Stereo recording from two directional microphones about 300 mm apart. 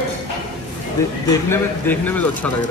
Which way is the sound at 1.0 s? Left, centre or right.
Centre.